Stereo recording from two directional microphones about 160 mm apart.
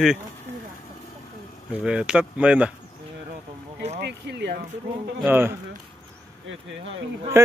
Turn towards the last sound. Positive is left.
turn(degrees=-15)  # may be behind; listen again after turning